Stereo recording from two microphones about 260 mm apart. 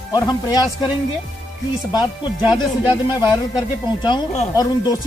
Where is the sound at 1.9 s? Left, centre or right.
Centre.